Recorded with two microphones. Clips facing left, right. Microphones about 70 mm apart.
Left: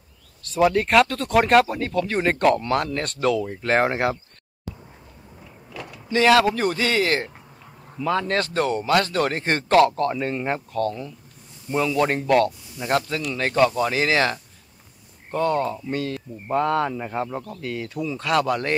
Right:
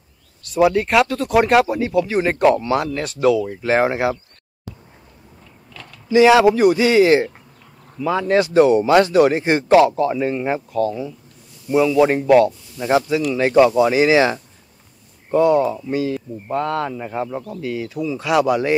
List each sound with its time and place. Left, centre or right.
0.4 s speech: centre
5.7 s a sound: centre
6.0 s speech: centre